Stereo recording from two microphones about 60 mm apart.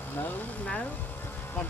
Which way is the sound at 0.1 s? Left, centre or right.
Left.